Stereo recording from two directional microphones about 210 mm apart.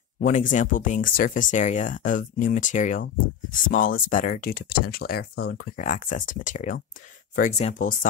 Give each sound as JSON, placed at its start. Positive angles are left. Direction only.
{"t": 0.2, "sound": "speech", "side_deg": 35}